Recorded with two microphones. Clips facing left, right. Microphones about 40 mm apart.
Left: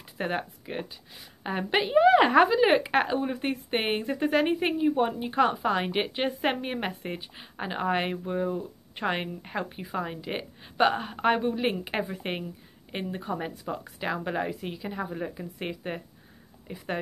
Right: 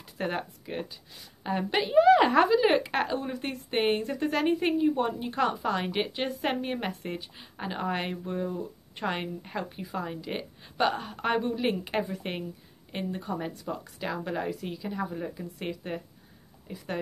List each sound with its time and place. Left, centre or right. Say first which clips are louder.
0.2 s a woman's voice: left 1 dB; centre